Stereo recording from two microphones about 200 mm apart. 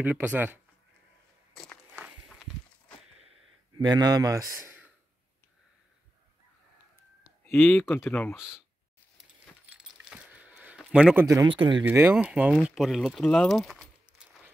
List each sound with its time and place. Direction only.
0.0 s speech: 10° right (ahead or behind)
1.5 s walk: centre (ahead or behind)
3.7 s speech: 20° right (ahead or behind)
7.5 s speech: 10° left (ahead or behind)
8.4 s speech: 5° right (ahead or behind)
9.7 s a sound: 5° right (ahead or behind)
11.2 s speech: 20° right (ahead or behind)
11.8 s speech: 10° right (ahead or behind)